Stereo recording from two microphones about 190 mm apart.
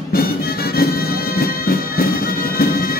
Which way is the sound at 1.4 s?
50° left (ahead or behind).